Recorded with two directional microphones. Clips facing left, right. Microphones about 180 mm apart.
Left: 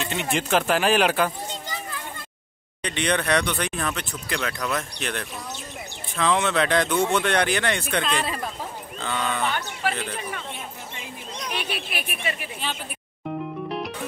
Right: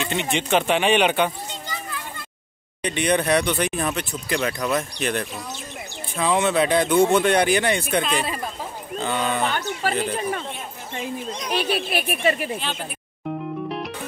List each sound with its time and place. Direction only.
0.0 s speech: centre (ahead or behind)
2.8 s speech: 10° right (ahead or behind)
9.4 s speech: 40° right (ahead or behind)
11.5 s speech: 35° right (ahead or behind)
13.7 s music: centre (ahead or behind)